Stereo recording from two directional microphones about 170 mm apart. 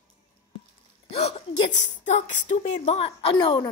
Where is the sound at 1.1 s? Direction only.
40° left (ahead or behind).